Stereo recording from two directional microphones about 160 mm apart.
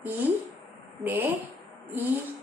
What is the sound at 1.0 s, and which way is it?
Speech, 10° right (ahead or behind).